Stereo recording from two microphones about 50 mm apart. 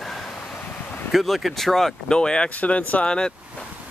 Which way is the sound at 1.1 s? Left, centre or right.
Centre.